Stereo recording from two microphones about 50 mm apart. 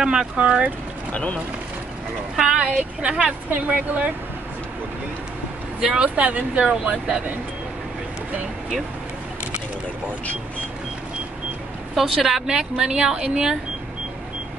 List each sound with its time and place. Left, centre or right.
0.0 s a woman's voice: centre
1.1 s speech: left
2.3 s a woman's voice: centre
2.6 s speech: right
6.0 s speech: right
11.9 s a woman's voice: centre